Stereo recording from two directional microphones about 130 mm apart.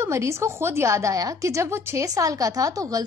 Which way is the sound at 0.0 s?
20° right (ahead or behind).